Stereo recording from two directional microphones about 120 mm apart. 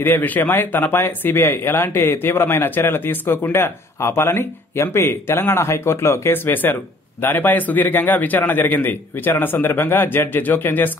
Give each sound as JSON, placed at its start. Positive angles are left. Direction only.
{"t": 0.0, "sound": "speech", "side_deg": 15}